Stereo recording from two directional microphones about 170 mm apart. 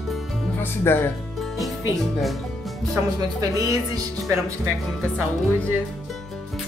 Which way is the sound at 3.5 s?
20° right (ahead or behind).